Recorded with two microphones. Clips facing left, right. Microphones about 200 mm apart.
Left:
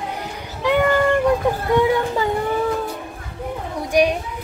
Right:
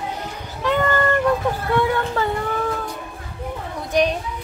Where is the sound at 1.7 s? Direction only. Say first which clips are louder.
Left 3 dB; 15° left (ahead or behind).